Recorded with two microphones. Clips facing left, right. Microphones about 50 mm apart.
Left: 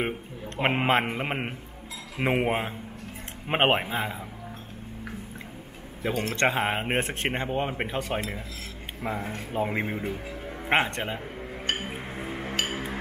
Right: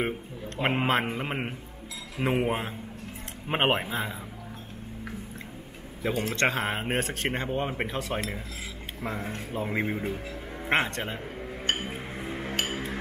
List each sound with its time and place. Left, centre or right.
0.6 s a man's voice: centre
6.3 s a man's voice: centre
9.3 s speech: centre
9.7 s speech: centre
10.7 s a man's voice: centre
11.3 s music: centre